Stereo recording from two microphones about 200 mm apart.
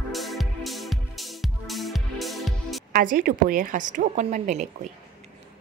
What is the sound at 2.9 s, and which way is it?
A woman's voice, 45° right (ahead or behind).